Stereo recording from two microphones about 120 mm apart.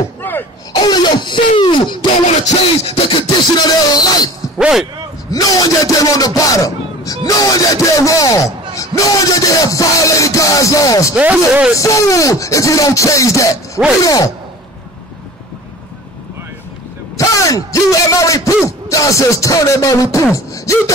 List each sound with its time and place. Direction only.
0.2 s a sound: 15° left (ahead or behind)
0.7 s a sound: 35° left (ahead or behind)
2.8 s beatboxing: 50° left (ahead or behind); by 4.3 s 35° left (ahead or behind)
4.6 s speech: 5° right (ahead or behind)
5.3 s a man's voice: 30° left (ahead or behind)
11.1 s speech: 10° right (ahead or behind)
11.7 s speech: 25° left (ahead or behind)
17.2 s speech: 25° left (ahead or behind)
20.3 s beatboxing: 25° left (ahead or behind)